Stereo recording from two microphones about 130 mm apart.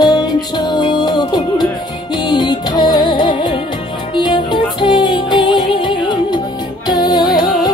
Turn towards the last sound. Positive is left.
turn(degrees=35)  # may be behind; listen again after turning